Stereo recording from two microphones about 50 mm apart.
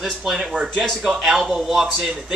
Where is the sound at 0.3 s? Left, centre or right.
Centre.